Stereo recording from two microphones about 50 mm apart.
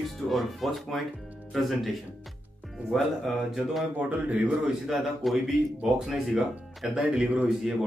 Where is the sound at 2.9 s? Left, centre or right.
Centre.